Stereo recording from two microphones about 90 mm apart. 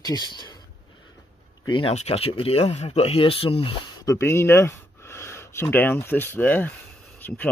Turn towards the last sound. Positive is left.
turn(degrees=20)  # may be behind; listen again after turning